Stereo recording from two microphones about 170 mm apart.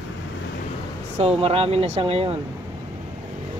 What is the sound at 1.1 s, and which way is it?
Speech, 35° right (ahead or behind).